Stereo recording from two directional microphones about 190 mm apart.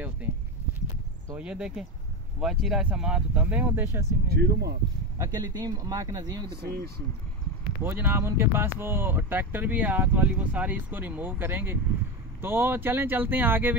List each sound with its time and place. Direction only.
1.3 s speech: 5° right (ahead or behind)
4.3 s speech: 60° right (ahead or behind)
5.1 s speech: 20° right (ahead or behind)
6.6 s speech: 55° right (ahead or behind)
7.8 s speech: 10° right (ahead or behind)